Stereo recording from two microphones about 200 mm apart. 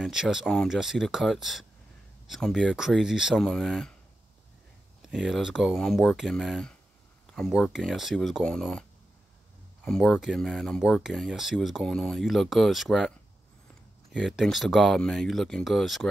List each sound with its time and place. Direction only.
0.0 s speech: 5° right (ahead or behind)
5.1 s speech: centre (ahead or behind)
9.8 s speech: centre (ahead or behind)
14.1 s speech: centre (ahead or behind)